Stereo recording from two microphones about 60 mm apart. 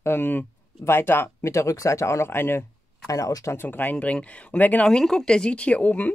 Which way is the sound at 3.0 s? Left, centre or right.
Left.